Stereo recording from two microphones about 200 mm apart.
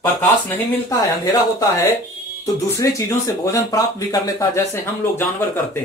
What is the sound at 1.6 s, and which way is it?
Speech, 15° left (ahead or behind).